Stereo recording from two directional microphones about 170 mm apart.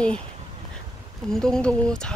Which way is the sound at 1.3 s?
5° left (ahead or behind).